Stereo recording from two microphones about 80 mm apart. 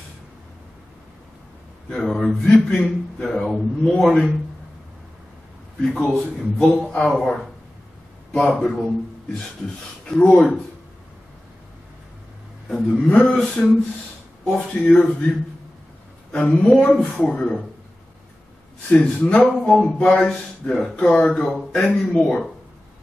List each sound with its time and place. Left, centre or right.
1.9 s speech: centre
5.8 s a man's voice: centre
10.2 s speech: centre
12.6 s a man's voice: centre
18.9 s speech: centre
22.0 s speech: centre